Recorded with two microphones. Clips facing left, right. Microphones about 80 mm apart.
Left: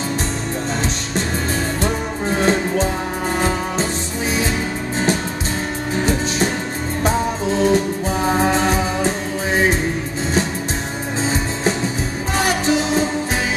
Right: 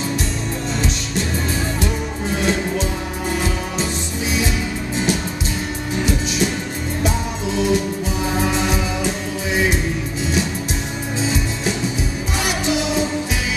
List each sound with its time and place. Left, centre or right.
1.8 s music: left
7.0 s music: left
11.2 s music: left